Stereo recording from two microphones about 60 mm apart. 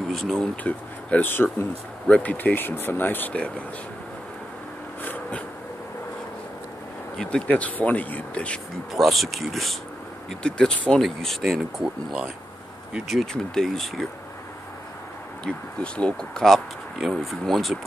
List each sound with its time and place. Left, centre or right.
0.1 s speech: centre
1.2 s speech: left
2.0 s speech: centre
2.3 s speech: left
3.3 s speech: left
5.0 s a sound: left
7.2 s speech: centre
7.4 s speech: left
8.9 s speech: centre
10.4 s speech: centre
11.0 s speech: centre
11.4 s speech: centre
13.1 s speech: centre
15.4 s speech: centre